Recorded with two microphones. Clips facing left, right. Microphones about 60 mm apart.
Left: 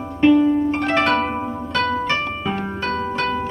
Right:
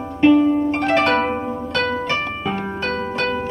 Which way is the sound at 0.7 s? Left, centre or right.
Centre.